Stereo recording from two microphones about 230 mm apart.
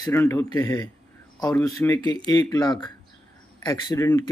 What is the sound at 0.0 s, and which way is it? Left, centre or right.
Speech, centre.